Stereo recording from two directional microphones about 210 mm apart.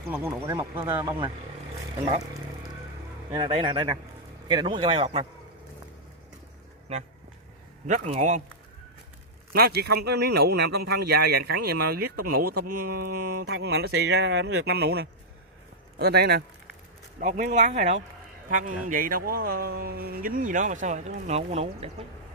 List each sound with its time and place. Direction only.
0.1 s speech: 10° right (ahead or behind)
3.3 s speech: 20° right (ahead or behind)
7.8 s speech: 35° right (ahead or behind)
9.5 s a man's voice: 45° right (ahead or behind); by 21.9 s 30° right (ahead or behind)